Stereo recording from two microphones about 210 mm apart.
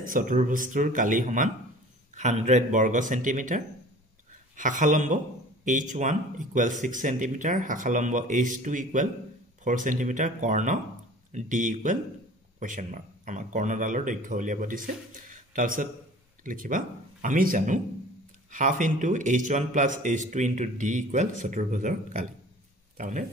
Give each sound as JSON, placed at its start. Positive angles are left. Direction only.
{"t": 0.0, "sound": "speech", "side_deg": -40}